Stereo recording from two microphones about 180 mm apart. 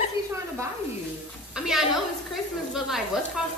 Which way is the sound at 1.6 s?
Centre (ahead or behind).